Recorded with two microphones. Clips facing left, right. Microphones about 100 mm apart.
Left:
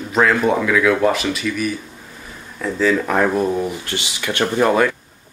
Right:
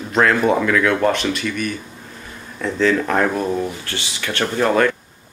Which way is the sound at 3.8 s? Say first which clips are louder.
Left 2 dB; 15° left (ahead or behind).